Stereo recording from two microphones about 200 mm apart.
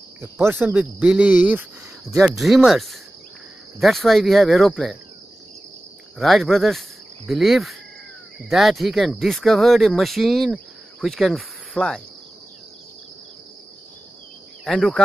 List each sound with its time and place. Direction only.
0.2 s speech: 10° right (ahead or behind)
6.1 s speech: centre (ahead or behind)
14.6 s speech: centre (ahead or behind)